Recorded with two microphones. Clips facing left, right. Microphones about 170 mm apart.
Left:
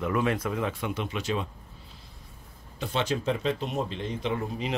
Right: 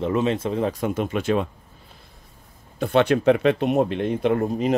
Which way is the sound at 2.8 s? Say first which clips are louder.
Right 10 dB; 60° right (ahead or behind).